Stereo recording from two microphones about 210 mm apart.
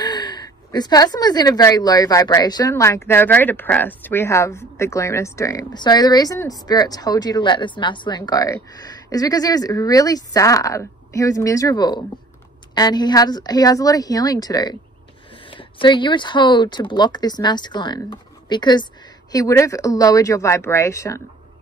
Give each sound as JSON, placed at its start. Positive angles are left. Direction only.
{"t": 0.0, "sound": "speech", "side_deg": 20}